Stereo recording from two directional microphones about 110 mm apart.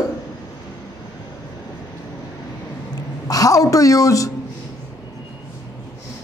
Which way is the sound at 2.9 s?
35° left (ahead or behind).